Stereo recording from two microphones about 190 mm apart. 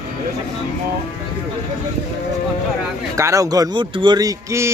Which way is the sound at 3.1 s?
15° right (ahead or behind).